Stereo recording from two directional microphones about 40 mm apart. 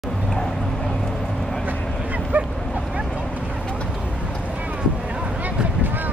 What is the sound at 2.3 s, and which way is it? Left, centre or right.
Dog, right.